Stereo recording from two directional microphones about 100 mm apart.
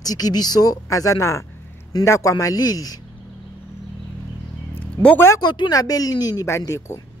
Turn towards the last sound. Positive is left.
turn(degrees=30)  # may be behind; listen again after turning